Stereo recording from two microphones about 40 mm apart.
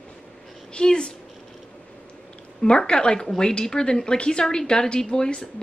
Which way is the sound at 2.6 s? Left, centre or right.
Left.